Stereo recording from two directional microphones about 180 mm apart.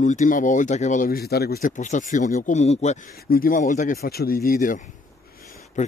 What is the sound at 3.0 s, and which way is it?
Speech, 55° left (ahead or behind).